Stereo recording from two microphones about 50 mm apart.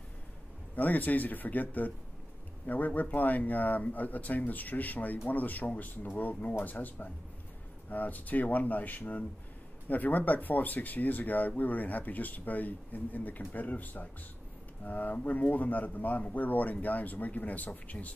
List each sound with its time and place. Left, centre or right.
0.7 s speech: left